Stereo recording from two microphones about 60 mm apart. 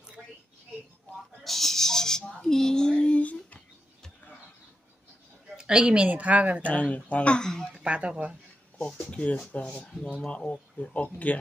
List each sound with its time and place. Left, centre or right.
1.4 s a sound: centre; by 3.5 s left
5.6 s a woman's voice: centre
6.6 s speech: left
7.8 s a woman's voice: centre
9.1 s speech: left